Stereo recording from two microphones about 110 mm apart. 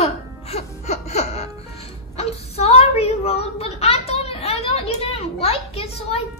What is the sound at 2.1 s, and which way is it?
Speech, 70° left (ahead or behind).